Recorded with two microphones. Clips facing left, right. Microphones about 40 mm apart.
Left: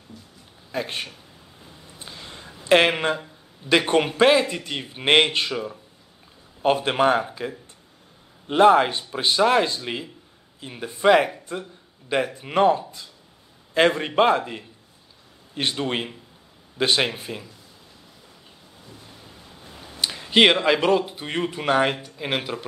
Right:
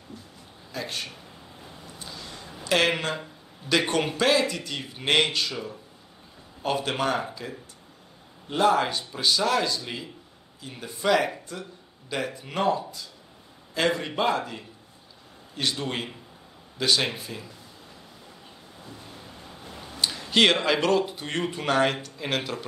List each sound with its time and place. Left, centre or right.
0.7 s speech: left
2.0 s a sound: left
3.7 s speech: left
6.6 s speech: left
8.5 s speech: left
15.5 s speech: left
18.9 s waves: centre
19.9 s a sound: centre
20.5 s a man's voice: centre